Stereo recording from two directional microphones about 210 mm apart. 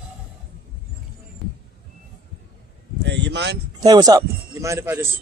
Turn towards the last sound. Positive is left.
turn(degrees=-15)  # may be behind; listen again after turning